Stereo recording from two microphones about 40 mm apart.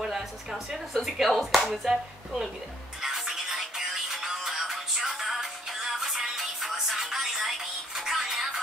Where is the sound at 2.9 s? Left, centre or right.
Centre.